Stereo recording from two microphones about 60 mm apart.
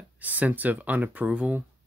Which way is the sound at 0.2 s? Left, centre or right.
Right.